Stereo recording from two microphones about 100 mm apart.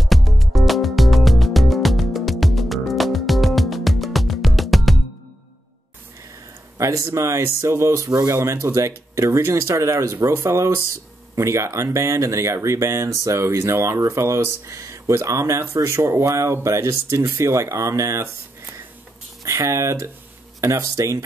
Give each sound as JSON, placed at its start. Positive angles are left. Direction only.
{"t": 0.0, "sound": "music", "side_deg": 0}
{"t": 6.8, "sound": "speech", "side_deg": -30}